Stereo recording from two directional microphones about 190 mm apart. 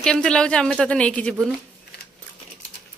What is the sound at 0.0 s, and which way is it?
Speech, 5° left (ahead or behind).